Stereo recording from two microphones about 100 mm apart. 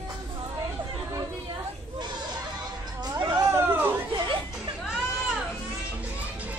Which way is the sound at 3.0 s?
45° right (ahead or behind).